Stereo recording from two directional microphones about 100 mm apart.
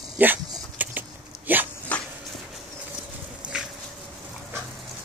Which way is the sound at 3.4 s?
10° right (ahead or behind).